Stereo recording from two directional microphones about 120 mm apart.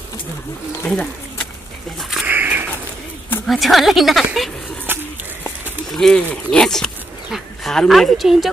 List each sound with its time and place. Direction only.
0.8 s speech: 10° left (ahead or behind)
2.0 s speech: 5° right (ahead or behind)
2.2 s a sound: 15° right (ahead or behind)
3.4 s a woman's voice: centre (ahead or behind)
4.9 s a sound: 15° right (ahead or behind)
5.9 s a woman's voice: 5° left (ahead or behind)